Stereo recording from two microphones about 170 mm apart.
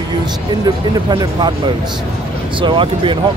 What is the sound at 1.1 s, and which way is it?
Speech, 25° right (ahead or behind).